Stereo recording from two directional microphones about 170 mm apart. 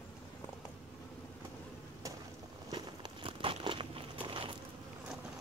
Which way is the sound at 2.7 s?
30° right (ahead or behind).